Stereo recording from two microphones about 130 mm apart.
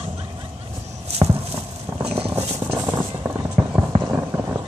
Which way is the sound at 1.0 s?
50° right (ahead or behind).